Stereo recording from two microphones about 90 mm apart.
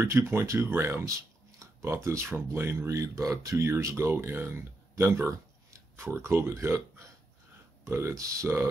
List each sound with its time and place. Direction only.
0.0 s speech: 30° right (ahead or behind)
1.6 s a sound: 35° right (ahead or behind)
2.0 s speech: 30° right (ahead or behind)
2.9 s speech: 40° right (ahead or behind)
5.3 s a sound: 30° right (ahead or behind)
7.8 s speech: 30° right (ahead or behind)